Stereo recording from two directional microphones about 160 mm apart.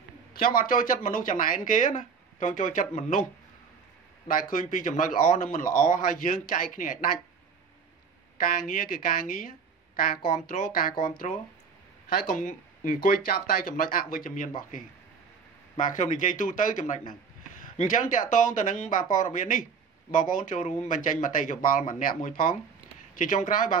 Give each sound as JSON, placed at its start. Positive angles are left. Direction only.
{"t": 0.4, "sound": "speech", "side_deg": 65}
{"t": 4.3, "sound": "speech", "side_deg": 60}
{"t": 8.5, "sound": "speech", "side_deg": 60}
{"t": 12.1, "sound": "speech", "side_deg": 65}
{"t": 15.8, "sound": "speech", "side_deg": 55}
{"t": 23.1, "sound": "speech", "side_deg": 55}